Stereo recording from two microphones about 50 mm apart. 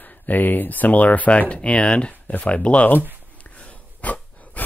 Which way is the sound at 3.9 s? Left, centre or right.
Left.